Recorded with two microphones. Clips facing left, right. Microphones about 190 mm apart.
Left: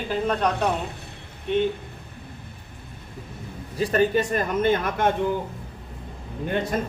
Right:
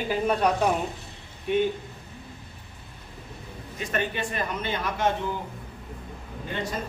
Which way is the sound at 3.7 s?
35° left (ahead or behind).